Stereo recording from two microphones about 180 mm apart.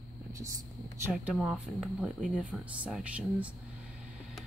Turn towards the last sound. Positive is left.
turn(degrees=-5)  # may be behind; listen again after turning